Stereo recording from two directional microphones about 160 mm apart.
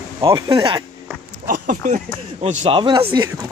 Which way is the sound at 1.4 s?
55° right (ahead or behind).